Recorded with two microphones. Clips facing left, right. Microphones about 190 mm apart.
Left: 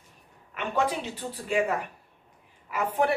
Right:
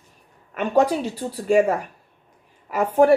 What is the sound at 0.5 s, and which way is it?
A woman's voice, 40° right (ahead or behind).